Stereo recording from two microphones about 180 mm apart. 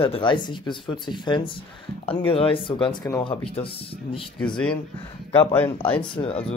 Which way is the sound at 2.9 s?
15° left (ahead or behind).